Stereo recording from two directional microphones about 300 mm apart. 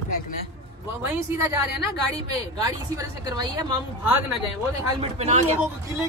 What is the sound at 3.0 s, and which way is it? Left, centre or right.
A woman's voice, centre.